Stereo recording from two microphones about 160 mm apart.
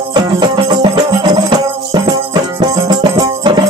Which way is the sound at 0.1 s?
30° right (ahead or behind).